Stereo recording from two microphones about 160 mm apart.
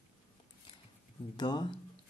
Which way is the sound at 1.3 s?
25° left (ahead or behind).